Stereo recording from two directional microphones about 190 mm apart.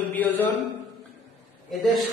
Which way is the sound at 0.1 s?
10° left (ahead or behind).